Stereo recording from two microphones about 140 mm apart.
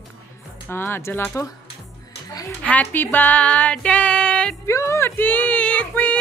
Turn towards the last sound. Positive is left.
turn(degrees=10)  # may be behind; listen again after turning